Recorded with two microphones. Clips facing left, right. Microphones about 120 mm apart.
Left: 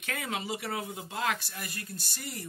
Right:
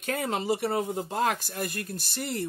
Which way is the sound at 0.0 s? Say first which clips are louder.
Right 6 dB; 40° right (ahead or behind).